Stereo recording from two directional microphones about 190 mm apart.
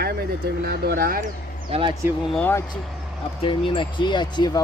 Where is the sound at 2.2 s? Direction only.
5° left (ahead or behind).